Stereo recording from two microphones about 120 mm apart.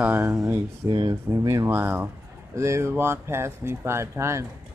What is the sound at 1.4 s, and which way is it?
Speech, 25° right (ahead or behind).